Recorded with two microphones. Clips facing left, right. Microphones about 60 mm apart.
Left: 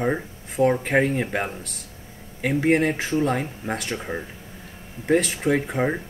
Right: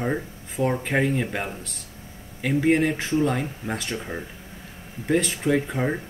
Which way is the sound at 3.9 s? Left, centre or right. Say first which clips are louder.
Left 2 dB; centre.